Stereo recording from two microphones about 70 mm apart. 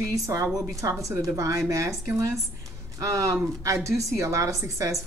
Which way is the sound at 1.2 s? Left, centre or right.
Right.